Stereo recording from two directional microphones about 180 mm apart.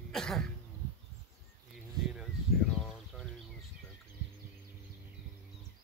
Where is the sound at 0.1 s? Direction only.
Centre (ahead or behind).